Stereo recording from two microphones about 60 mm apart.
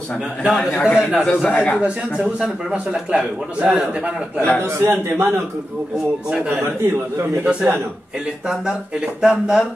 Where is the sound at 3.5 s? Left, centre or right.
Right.